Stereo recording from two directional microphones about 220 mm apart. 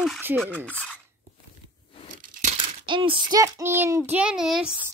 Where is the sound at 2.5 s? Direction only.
25° right (ahead or behind); by 4.9 s 5° right (ahead or behind).